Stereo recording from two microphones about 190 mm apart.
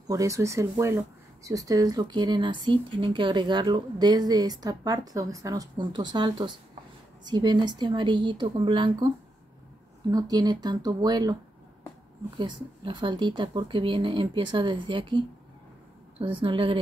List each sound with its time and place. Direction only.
0.1 s speech: 15° right (ahead or behind)
10.1 s speech: 20° right (ahead or behind)
12.4 s speech: 25° right (ahead or behind)